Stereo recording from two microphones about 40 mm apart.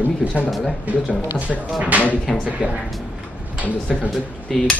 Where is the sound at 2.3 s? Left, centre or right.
Centre.